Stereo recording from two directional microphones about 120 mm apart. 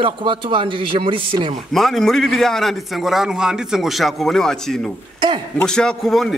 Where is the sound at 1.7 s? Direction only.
5° left (ahead or behind).